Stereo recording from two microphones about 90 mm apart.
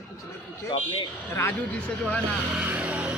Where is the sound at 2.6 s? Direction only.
15° right (ahead or behind).